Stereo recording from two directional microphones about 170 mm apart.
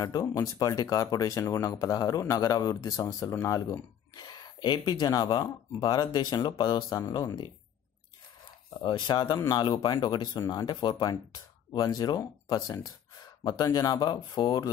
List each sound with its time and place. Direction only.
0.0 s speech: 20° left (ahead or behind)
8.8 s speech: 25° left (ahead or behind)